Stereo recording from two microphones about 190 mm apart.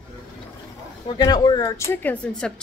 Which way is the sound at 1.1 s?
20° left (ahead or behind).